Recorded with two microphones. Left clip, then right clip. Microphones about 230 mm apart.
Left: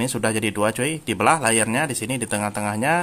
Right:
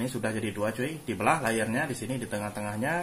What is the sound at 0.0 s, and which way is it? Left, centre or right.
Speech, left.